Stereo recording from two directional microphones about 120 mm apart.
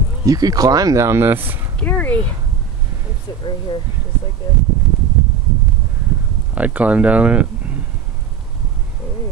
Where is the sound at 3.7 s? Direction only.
35° left (ahead or behind).